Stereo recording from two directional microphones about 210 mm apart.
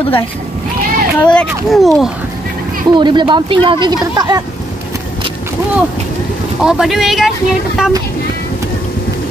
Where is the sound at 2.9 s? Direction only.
20° right (ahead or behind).